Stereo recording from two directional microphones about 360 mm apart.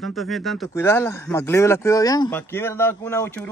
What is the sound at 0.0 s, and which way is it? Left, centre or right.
Speech, centre.